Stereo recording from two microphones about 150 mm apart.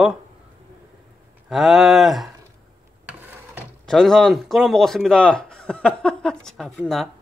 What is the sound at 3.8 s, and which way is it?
Speech, 5° left (ahead or behind).